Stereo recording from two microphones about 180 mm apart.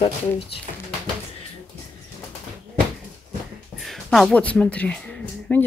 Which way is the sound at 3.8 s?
Centre (ahead or behind).